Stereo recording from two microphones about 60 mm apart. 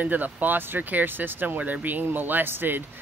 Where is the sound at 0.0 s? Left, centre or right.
Right.